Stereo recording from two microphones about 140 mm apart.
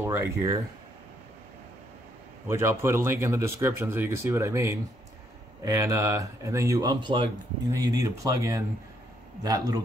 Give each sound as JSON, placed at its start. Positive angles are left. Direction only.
{"t": 0.0, "sound": "speech", "side_deg": -20}
{"t": 2.4, "sound": "speech", "side_deg": -15}